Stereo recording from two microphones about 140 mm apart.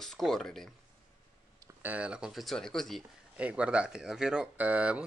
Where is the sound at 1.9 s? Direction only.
10° right (ahead or behind).